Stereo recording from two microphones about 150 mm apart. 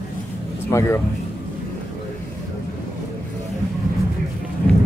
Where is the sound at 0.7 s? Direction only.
20° left (ahead or behind).